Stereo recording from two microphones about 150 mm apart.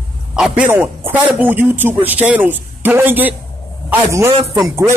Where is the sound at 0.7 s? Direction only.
15° right (ahead or behind).